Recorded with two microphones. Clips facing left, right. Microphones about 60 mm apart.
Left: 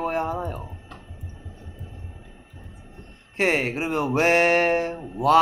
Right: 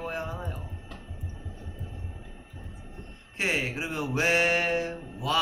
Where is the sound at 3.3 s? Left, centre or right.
Left.